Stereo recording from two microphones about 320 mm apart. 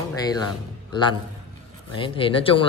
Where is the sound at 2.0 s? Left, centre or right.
Centre.